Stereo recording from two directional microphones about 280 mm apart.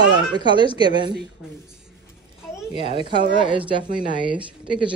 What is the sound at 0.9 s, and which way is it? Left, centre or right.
Speech, centre.